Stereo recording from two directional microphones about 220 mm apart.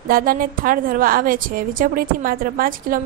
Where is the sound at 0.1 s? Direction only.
40° right (ahead or behind).